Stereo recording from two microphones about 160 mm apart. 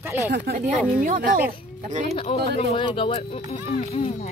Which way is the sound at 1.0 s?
55° right (ahead or behind).